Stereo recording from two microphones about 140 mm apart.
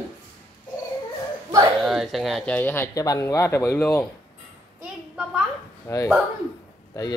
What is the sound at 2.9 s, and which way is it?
Speech, 25° left (ahead or behind).